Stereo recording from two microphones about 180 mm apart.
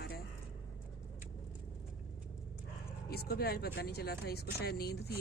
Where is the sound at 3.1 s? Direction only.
60° left (ahead or behind).